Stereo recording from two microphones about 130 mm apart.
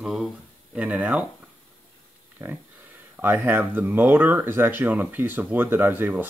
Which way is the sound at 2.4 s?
15° right (ahead or behind).